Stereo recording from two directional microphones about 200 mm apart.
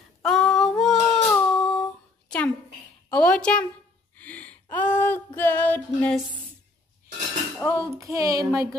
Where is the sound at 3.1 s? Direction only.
5° left (ahead or behind).